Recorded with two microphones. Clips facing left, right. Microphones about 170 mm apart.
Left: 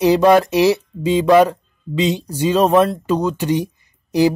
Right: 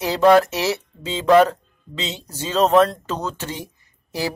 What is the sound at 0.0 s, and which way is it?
Speech, 15° left (ahead or behind).